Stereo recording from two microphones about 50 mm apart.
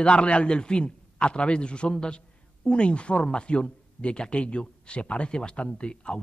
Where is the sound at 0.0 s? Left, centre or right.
Left.